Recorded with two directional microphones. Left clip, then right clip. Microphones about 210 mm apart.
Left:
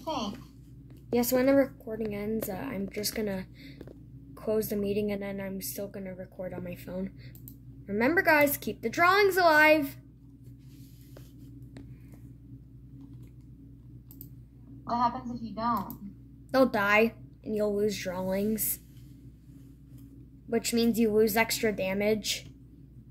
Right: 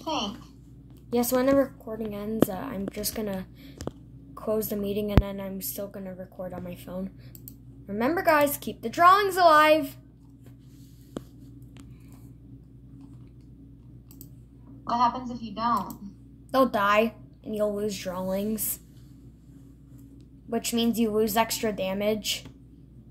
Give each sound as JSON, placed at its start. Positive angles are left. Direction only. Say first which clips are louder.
{"t": 0.0, "sound": "a sound", "louder": "right 4 dB", "side_deg": -5}
{"t": 1.1, "sound": "a woman's voice", "louder": "right 2 dB", "side_deg": 10}
{"t": 16.5, "sound": "a woman's voice", "louder": "right 2 dB", "side_deg": 15}
{"t": 20.4, "sound": "a woman's voice", "louder": "even", "side_deg": 15}